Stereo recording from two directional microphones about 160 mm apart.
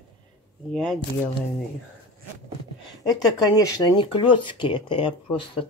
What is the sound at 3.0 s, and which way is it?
Speech, 25° left (ahead or behind).